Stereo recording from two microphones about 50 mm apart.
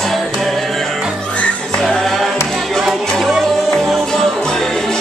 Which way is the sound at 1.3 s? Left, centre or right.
Left.